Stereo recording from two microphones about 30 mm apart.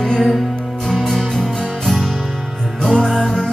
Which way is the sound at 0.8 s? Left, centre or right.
Centre.